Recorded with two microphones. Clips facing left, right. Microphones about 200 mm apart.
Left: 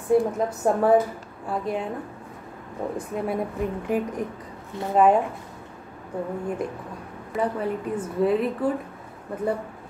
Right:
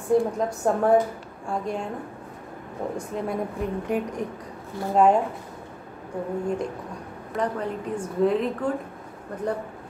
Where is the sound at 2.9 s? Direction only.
5° left (ahead or behind).